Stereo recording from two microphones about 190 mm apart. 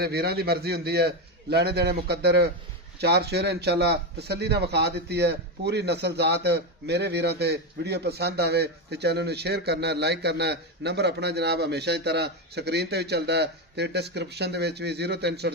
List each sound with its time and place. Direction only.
0.0 s a man's voice: 55° right (ahead or behind)